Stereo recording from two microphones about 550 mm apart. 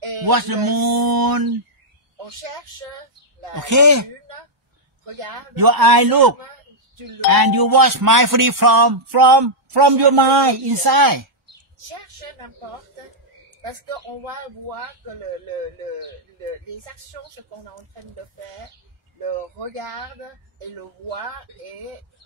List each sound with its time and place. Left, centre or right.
0.2 s music: right
3.5 s music: right
5.6 s music: right